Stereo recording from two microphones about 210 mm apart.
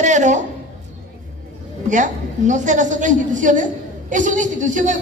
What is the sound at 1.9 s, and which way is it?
A woman's voice, 35° right (ahead or behind).